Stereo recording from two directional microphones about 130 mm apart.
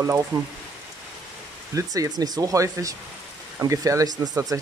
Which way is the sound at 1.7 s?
25° right (ahead or behind).